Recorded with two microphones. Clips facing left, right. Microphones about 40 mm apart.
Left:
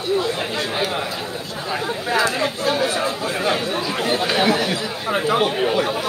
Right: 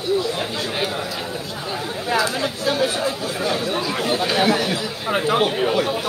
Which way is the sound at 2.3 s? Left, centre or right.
Centre.